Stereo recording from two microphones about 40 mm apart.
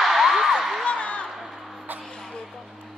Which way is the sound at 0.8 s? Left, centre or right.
Left.